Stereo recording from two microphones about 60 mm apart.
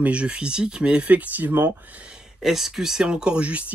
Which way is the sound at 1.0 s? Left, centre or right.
Right.